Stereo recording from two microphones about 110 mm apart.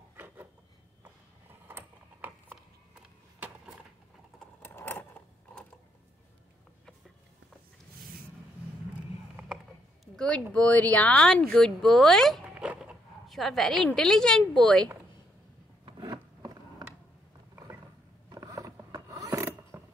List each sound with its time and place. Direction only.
0.1 s wood: 20° right (ahead or behind)
1.7 s a sound: 20° right (ahead or behind)
4.6 s a sound: 20° left (ahead or behind)
10.1 s speech: 5° left (ahead or behind)
12.5 s dog: 10° right (ahead or behind)
13.3 s speech: centre (ahead or behind)
15.8 s a sound: 35° right (ahead or behind)
18.3 s mechanisms: 30° right (ahead or behind)
19.0 s pulleys: 25° right (ahead or behind)